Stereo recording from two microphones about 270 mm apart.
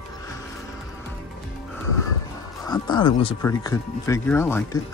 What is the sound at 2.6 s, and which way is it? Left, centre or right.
Speech, centre.